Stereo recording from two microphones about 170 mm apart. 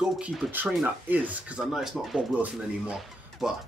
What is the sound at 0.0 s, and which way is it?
Speech, 5° right (ahead or behind).